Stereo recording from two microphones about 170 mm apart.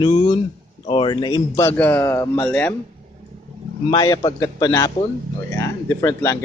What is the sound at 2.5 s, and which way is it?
Speech, 10° left (ahead or behind).